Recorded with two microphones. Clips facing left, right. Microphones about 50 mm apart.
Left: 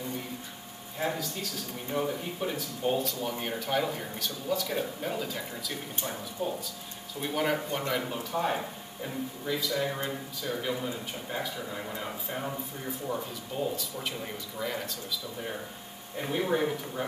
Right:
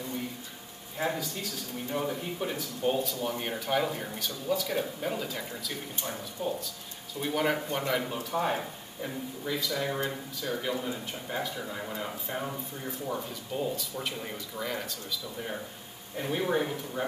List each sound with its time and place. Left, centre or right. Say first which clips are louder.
0.9 s speech: even; centre
6.4 s speech: even; centre